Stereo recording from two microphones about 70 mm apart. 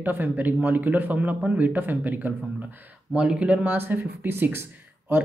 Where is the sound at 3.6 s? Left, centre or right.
Right.